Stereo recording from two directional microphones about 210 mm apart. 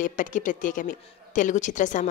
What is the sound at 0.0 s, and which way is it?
A man's voice, 40° left (ahead or behind).